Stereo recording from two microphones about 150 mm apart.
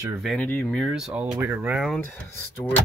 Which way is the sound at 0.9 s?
5° right (ahead or behind).